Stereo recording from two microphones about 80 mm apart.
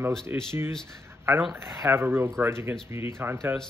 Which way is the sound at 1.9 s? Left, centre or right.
Right.